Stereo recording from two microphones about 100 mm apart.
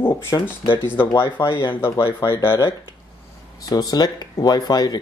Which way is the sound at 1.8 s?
25° left (ahead or behind).